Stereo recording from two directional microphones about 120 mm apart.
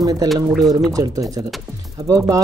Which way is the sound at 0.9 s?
30° right (ahead or behind).